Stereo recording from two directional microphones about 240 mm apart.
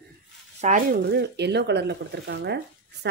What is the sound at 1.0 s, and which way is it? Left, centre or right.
Speech, right.